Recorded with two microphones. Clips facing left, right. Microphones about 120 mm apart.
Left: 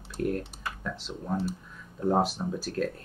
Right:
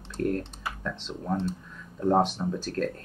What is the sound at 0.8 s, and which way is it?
Speech, 5° left (ahead or behind).